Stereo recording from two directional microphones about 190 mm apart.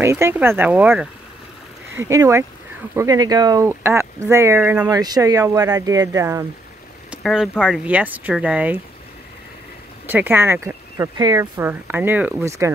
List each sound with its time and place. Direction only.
0.0 s speech: 15° right (ahead or behind)
7.1 s speech: centre (ahead or behind)
10.0 s speech: 10° right (ahead or behind)